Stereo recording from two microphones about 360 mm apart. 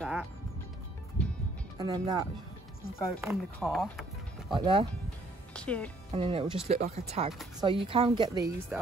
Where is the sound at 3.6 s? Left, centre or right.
Centre.